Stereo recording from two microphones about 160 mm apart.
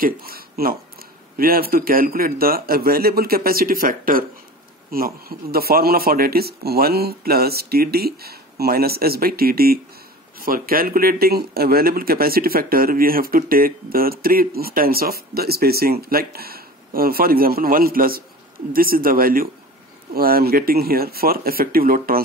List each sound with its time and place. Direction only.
0.0 s a man's voice: 65° right (ahead or behind)